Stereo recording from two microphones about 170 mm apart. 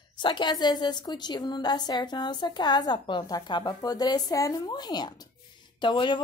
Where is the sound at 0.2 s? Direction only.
30° left (ahead or behind).